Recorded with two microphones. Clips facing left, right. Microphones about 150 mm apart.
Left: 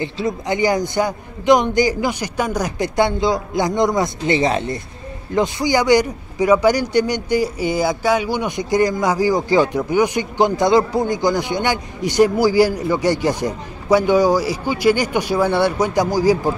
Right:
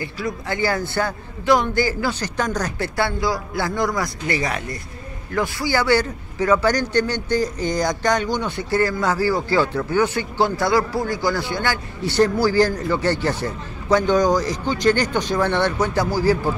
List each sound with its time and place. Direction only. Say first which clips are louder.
0.0 s a man's voice: left 5 dB; 20° left (ahead or behind)